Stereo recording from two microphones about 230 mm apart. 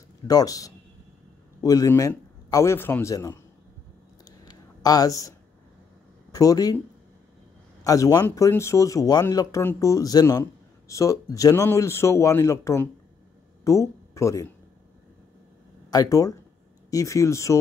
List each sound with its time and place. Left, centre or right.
0.3 s speech: centre
4.5 s a sound: centre
6.3 s speech: centre
7.8 s speech: centre
15.9 s speech: centre